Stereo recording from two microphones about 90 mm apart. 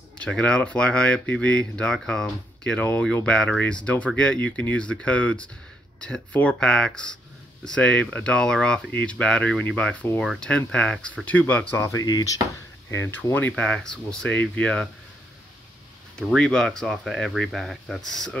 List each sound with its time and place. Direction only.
0.2 s speech: 10° left (ahead or behind)
11.7 s speech: 35° left (ahead or behind)
12.9 s speech: 25° left (ahead or behind)
16.2 s speech: 10° left (ahead or behind)